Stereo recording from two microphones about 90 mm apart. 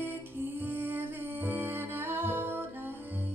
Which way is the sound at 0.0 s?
25° right (ahead or behind).